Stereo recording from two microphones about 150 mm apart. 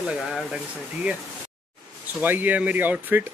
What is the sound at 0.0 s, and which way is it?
Speech, centre (ahead or behind).